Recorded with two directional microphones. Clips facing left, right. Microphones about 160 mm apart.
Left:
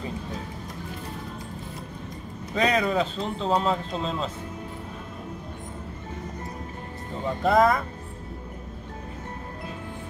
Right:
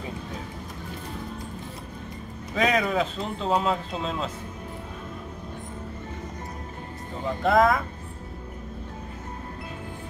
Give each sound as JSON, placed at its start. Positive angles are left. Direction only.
{"t": 2.5, "sound": "speech", "side_deg": -5}
{"t": 7.2, "sound": "speech", "side_deg": 0}